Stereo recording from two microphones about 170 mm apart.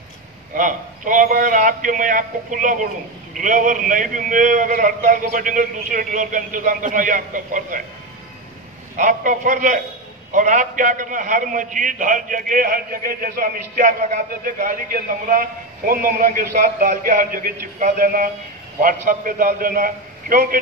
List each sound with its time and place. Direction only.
0.6 s a man's voice: 50° right (ahead or behind)
8.9 s a man's voice: 50° right (ahead or behind)